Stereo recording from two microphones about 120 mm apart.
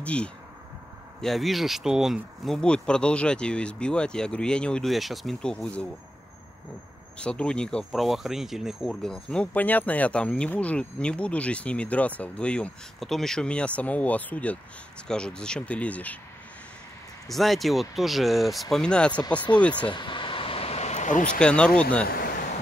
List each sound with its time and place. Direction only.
0.0 s speech: 10° left (ahead or behind)
7.2 s speech: 10° left (ahead or behind)
17.3 s speech: centre (ahead or behind)
19.9 s vehicle: 40° left (ahead or behind); by 21.3 s 85° left
21.3 s speech: 10° left (ahead or behind)